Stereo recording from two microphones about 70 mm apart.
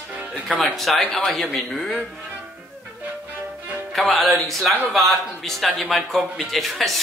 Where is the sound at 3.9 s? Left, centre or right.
Centre.